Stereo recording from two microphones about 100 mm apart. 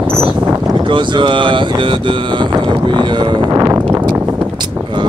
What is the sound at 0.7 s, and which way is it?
Speech, 55° right (ahead or behind).